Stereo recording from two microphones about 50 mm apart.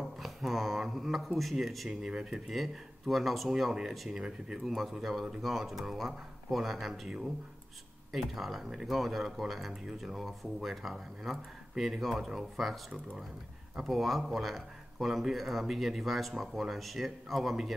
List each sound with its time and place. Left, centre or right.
0.0 s a sound: centre
1.9 s speech: centre
8.4 s speech: centre